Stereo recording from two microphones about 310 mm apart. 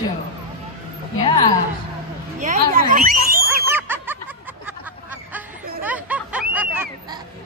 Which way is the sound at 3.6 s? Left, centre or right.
Centre.